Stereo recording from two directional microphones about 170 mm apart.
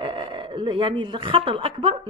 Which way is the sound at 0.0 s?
30° right (ahead or behind).